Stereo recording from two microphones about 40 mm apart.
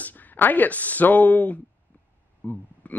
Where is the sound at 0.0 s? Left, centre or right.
Left.